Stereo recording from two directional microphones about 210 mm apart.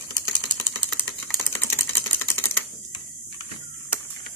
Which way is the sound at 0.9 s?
10° left (ahead or behind).